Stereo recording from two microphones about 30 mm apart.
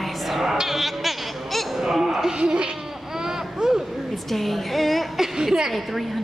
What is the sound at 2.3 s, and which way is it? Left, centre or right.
Goat, right.